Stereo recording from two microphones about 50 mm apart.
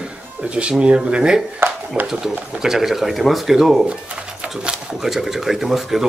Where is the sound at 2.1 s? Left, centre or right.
Centre.